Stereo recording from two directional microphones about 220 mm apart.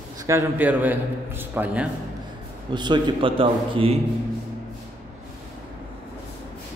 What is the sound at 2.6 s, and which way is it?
A man's voice, 20° right (ahead or behind).